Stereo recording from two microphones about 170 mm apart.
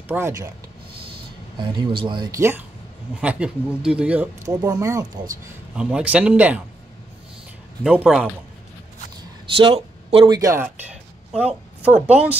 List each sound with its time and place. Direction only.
0.1 s speech: 15° right (ahead or behind)
1.6 s speech: 30° right (ahead or behind); by 4.3 s 5° right (ahead or behind)
4.6 s speech: 20° right (ahead or behind)
5.8 s speech: 5° right (ahead or behind)
7.8 s speech: 5° right (ahead or behind)
9.6 s speech: 35° right (ahead or behind); by 12.4 s 10° right (ahead or behind)